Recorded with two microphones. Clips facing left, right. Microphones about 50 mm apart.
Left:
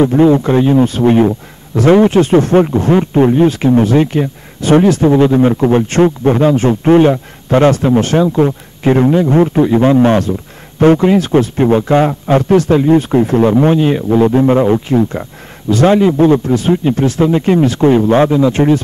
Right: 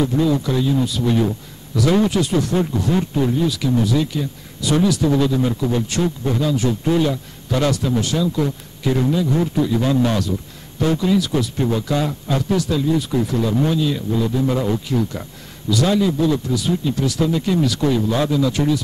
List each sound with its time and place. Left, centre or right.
0.0 s speech: left